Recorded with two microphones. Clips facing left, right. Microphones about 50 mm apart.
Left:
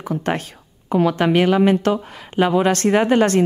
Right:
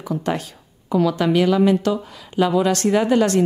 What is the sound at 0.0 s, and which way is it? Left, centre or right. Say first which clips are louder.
A woman's voice: left 1 dB; left.